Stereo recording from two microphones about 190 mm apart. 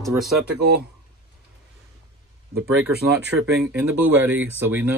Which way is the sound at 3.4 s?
60° right (ahead or behind).